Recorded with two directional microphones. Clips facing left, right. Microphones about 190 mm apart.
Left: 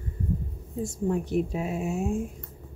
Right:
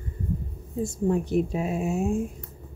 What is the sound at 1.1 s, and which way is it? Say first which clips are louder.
Speech: right 2 dB; 25° right (ahead or behind).